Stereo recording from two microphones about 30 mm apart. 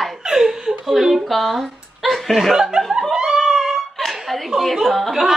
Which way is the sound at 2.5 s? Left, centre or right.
Centre.